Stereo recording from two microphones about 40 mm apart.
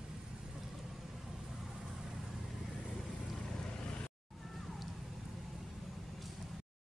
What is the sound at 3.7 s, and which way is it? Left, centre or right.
Vehicle, left.